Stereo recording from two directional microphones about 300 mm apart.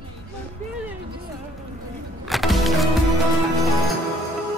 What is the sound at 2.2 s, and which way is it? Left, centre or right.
Music, centre.